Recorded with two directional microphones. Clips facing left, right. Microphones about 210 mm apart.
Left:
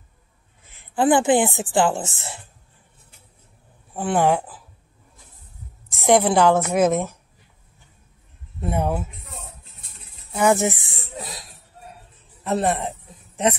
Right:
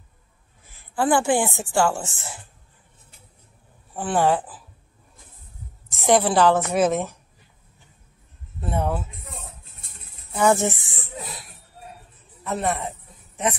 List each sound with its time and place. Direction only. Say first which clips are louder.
0.7 s a woman's voice: left 3 dB; 20° left (ahead or behind)
3.9 s a woman's voice: left 1 dB; 15° left (ahead or behind)
5.9 s a woman's voice: left 2 dB; 15° left (ahead or behind)
8.5 s a woman's voice: left 2 dB; 15° left (ahead or behind)
10.3 s a woman's voice: left 1 dB; 15° left (ahead or behind)
12.4 s a man's voice: left 4 dB; 30° left (ahead or behind)